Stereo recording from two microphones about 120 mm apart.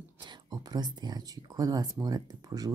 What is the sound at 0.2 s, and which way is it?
Speech, 35° right (ahead or behind).